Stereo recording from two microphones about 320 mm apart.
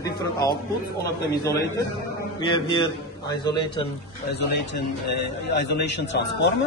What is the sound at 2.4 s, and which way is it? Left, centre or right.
A man's voice, centre.